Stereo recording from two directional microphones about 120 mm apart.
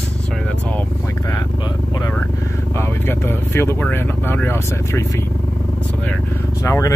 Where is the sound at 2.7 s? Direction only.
20° left (ahead or behind).